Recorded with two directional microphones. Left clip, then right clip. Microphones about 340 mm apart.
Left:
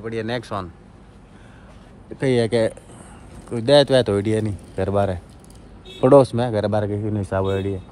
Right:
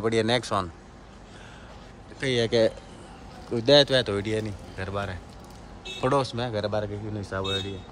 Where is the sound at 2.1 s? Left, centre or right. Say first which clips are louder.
Left 4 dB; centre.